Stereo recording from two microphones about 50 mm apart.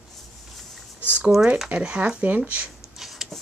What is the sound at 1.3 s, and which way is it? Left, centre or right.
Speech, centre.